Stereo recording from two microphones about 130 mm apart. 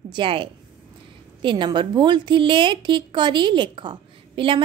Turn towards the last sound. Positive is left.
turn(degrees=-40)  # may be behind; listen again after turning